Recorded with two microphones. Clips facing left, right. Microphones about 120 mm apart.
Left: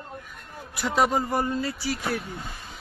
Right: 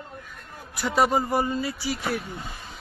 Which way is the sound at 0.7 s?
Centre (ahead or behind).